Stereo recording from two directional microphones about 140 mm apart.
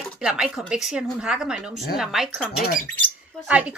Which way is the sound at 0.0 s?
Centre (ahead or behind).